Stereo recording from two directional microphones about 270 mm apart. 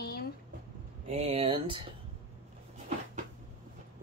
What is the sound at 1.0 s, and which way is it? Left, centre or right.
Speech, right.